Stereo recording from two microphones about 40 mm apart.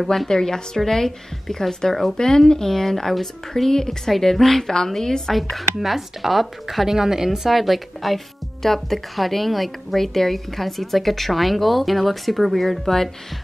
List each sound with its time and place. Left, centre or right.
0.3 s a woman's voice: centre
2.1 s a woman's voice: centre
5.8 s a woman's voice: centre
6.9 s a woman's voice: centre